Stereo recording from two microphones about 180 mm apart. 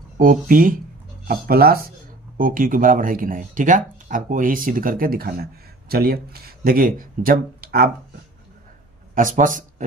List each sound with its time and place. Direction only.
0.2 s speech: 50° right (ahead or behind)
9.1 s speech: 50° right (ahead or behind)